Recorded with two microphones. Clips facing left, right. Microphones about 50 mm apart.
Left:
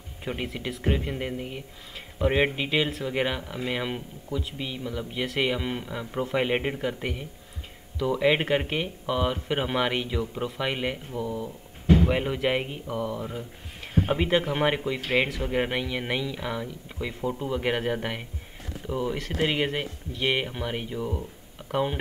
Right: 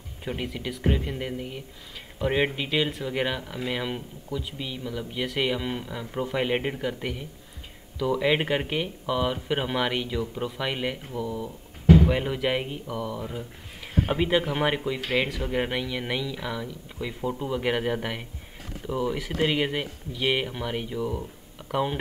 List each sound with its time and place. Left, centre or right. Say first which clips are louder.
0.2 s speech: even; centre
17.2 s speech: even; centre